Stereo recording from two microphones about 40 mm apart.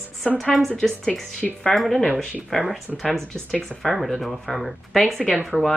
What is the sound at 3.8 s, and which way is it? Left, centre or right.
Speech, centre.